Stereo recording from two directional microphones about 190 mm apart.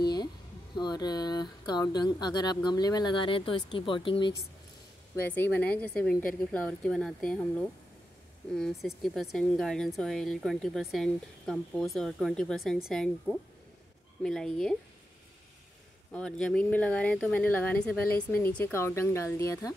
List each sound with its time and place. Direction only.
0.0 s a sound: 20° left (ahead or behind)
0.7 s speech: 20° left (ahead or behind)
5.1 s speech: 10° left (ahead or behind)
8.5 s speech: centre (ahead or behind)
16.1 s speech: 5° left (ahead or behind)